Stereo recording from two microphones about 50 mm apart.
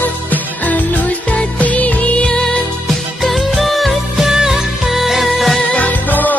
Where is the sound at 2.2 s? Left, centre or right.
Centre.